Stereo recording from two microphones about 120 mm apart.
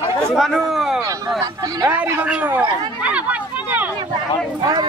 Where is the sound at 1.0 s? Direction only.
30° right (ahead or behind).